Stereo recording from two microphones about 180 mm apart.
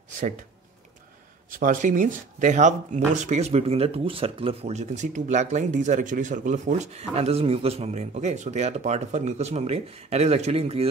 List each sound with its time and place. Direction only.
1.5 s speech: 50° right (ahead or behind); by 10.9 s 35° right (ahead or behind)